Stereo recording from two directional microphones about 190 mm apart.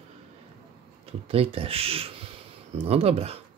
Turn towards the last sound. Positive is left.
turn(degrees=-30)  # may be behind; listen again after turning